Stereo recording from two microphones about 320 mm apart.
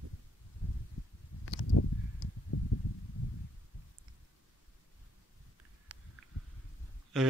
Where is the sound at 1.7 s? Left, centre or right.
Left.